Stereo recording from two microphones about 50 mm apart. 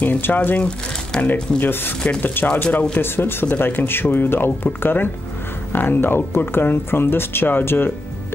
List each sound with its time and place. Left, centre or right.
0.0 s speech: left
2.6 s speech: left
3.0 s speech: left